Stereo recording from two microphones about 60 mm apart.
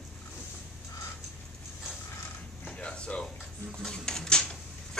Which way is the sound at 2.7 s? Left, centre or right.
Centre.